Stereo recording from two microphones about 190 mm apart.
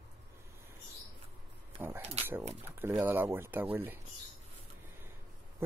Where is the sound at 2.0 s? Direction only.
35° right (ahead or behind).